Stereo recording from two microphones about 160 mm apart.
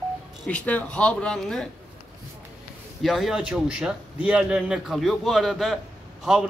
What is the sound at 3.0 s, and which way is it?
A man's voice, centre (ahead or behind).